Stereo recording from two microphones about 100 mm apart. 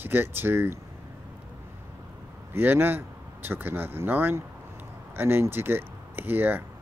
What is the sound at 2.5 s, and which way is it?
Speech, 20° right (ahead or behind).